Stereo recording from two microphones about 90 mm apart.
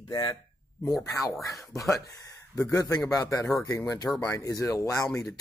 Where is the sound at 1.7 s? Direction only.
35° left (ahead or behind).